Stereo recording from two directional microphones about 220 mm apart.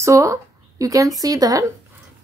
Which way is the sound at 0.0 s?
15° right (ahead or behind).